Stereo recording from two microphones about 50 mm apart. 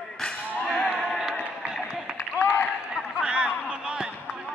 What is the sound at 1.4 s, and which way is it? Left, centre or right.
Run, right.